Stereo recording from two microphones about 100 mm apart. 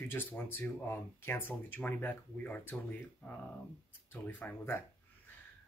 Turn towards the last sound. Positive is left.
turn(degrees=20)  # may be behind; listen again after turning